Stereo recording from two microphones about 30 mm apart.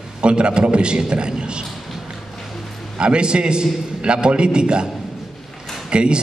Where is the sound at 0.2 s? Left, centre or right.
Right.